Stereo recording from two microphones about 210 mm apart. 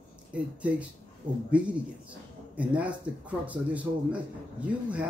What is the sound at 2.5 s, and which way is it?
A man's voice, 5° right (ahead or behind).